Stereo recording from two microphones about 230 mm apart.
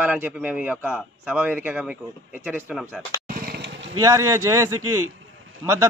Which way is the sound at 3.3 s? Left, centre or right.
Right.